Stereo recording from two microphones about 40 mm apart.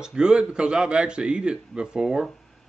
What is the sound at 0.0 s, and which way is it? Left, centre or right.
A man's voice, right.